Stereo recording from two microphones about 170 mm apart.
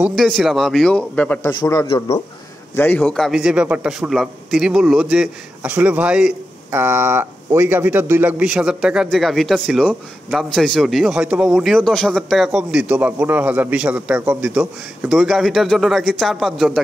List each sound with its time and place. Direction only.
0.1 s a man's voice: centre (ahead or behind)
1.6 s a man's voice: 20° left (ahead or behind)
1.9 s a man's voice: 35° left (ahead or behind)
2.7 s a man's voice: 10° left (ahead or behind)